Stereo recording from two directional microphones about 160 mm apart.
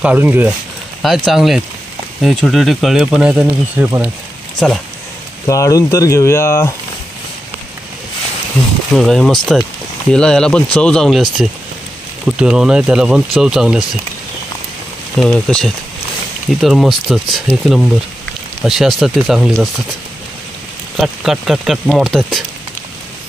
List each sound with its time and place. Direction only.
0.0 s speech: 10° right (ahead or behind)
1.0 s speech: centre (ahead or behind)
5.5 s speech: 20° left (ahead or behind)
8.9 s speech: centre (ahead or behind)
15.1 s speech: 5° left (ahead or behind)
20.9 s speech: centre (ahead or behind)